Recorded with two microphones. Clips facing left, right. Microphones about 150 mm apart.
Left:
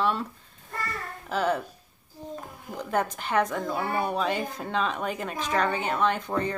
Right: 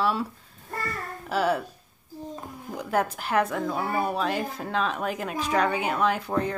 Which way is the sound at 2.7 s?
5° right (ahead or behind).